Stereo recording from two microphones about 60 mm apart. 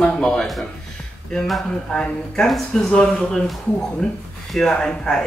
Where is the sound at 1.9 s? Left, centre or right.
Centre.